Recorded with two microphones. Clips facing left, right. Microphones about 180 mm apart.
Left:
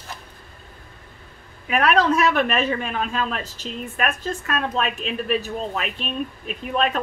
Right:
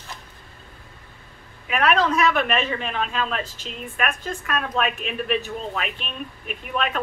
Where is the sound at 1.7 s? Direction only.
40° left (ahead or behind).